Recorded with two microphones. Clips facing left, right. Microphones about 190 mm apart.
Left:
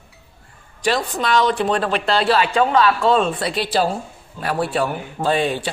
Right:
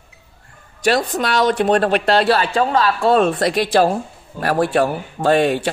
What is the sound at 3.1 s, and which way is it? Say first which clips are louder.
Speech: right 3 dB; 60° right (ahead or behind).